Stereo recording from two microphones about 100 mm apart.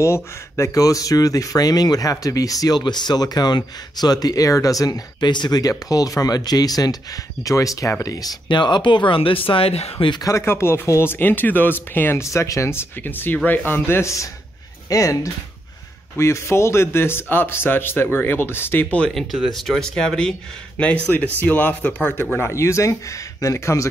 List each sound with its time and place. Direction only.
0.0 s speech: 30° left (ahead or behind); by 10.0 s 85° left
10.2 s speech: 25° left (ahead or behind); by 19.2 s 10° left (ahead or behind)
19.3 s speech: 5° right (ahead or behind)
20.7 s speech: 15° left (ahead or behind)